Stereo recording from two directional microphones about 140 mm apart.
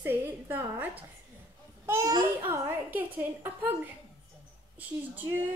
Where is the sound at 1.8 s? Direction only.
20° right (ahead or behind).